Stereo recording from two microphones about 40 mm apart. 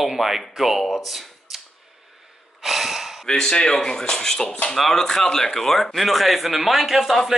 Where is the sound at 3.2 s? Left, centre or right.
Centre.